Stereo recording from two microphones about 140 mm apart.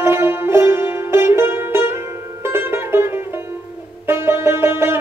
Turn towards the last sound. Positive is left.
turn(degrees=-15)  # may be behind; listen again after turning